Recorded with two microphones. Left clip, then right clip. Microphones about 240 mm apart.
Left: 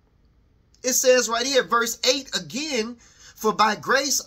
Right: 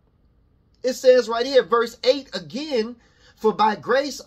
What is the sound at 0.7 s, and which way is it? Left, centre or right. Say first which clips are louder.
Speech: right 3 dB; centre.